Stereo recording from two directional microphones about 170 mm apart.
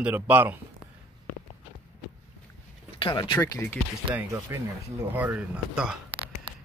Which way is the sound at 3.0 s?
30° left (ahead or behind).